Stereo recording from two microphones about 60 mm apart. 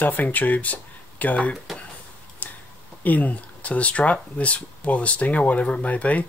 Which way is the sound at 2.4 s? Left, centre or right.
Left.